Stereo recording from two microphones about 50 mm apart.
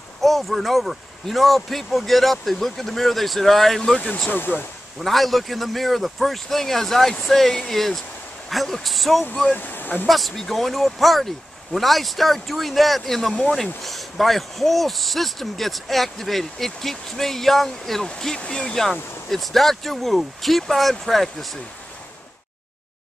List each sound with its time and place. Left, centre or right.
0.2 s speech: centre
4.3 s speech: left
5.0 s speech: centre
9.6 s speech: left
10.0 s speech: centre